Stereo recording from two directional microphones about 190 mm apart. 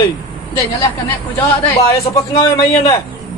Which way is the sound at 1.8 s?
15° left (ahead or behind).